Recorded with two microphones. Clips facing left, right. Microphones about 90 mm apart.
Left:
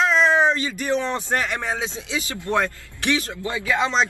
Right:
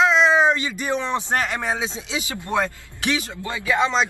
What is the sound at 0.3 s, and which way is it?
Speech, 15° right (ahead or behind).